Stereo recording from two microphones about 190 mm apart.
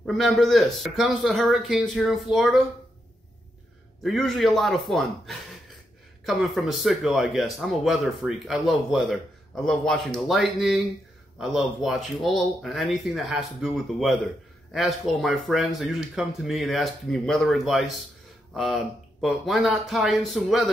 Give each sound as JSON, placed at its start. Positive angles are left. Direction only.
{"t": 0.0, "sound": "speech", "side_deg": 0}
{"t": 4.0, "sound": "speech", "side_deg": 0}